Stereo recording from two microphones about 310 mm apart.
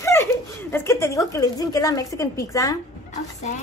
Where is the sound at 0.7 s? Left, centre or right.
Centre.